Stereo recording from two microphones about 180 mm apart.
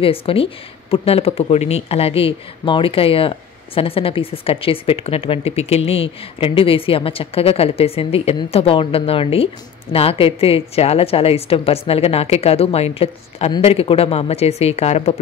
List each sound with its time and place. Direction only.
0.0 s speech: 30° left (ahead or behind)